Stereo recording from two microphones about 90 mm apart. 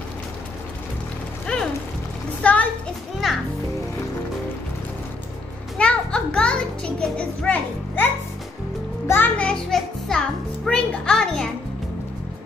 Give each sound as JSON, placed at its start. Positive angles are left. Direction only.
{"t": 1.5, "sound": "music", "side_deg": 10}
{"t": 5.8, "sound": "music", "side_deg": 10}
{"t": 9.4, "sound": "music", "side_deg": 10}